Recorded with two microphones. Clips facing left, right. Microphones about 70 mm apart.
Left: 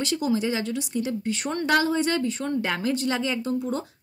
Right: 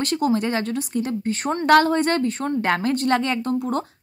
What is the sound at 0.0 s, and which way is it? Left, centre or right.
Speech, right.